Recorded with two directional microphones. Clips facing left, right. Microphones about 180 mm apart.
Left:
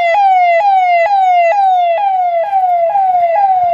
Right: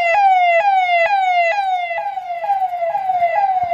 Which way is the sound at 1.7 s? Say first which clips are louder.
Left 10 dB; 70° left (ahead or behind).